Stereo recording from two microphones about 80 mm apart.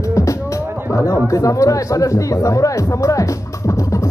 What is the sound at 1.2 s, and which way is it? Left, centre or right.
Chatter, left.